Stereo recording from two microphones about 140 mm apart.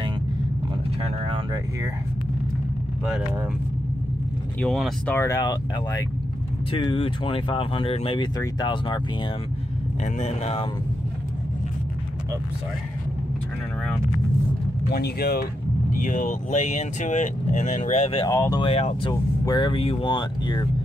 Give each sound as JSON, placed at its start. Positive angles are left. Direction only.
{"t": 1.0, "sound": "vehicle", "side_deg": -40}
{"t": 4.6, "sound": "speech", "side_deg": 0}
{"t": 5.1, "sound": "speech", "side_deg": 20}
{"t": 6.7, "sound": "speech", "side_deg": 35}
{"t": 10.1, "sound": "speech", "side_deg": 50}
{"t": 14.9, "sound": "speech", "side_deg": 90}
{"t": 15.9, "sound": "speech", "side_deg": 70}
{"t": 18.2, "sound": "speech", "side_deg": 25}
{"t": 18.6, "sound": "speech", "side_deg": 45}
{"t": 19.4, "sound": "speech", "side_deg": 30}